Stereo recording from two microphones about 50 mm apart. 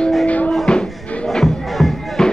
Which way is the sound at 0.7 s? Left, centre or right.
Centre.